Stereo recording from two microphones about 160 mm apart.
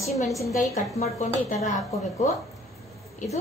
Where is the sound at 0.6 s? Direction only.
50° left (ahead or behind).